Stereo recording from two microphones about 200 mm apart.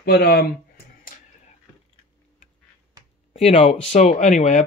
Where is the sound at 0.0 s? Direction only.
55° left (ahead or behind).